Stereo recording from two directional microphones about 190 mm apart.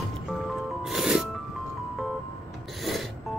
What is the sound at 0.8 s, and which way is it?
Music, centre (ahead or behind).